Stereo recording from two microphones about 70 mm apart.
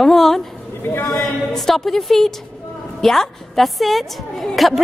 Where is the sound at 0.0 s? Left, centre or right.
Centre.